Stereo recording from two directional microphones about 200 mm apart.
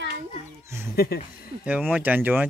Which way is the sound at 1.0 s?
50° left (ahead or behind).